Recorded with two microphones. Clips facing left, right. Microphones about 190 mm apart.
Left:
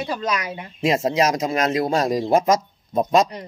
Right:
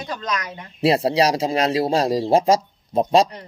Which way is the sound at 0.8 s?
35° right (ahead or behind).